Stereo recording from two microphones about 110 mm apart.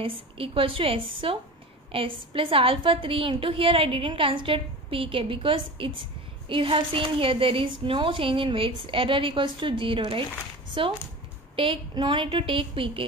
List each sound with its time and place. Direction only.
0.0 s a woman's voice: 55° right (ahead or behind)
11.5 s a woman's voice: 55° right (ahead or behind)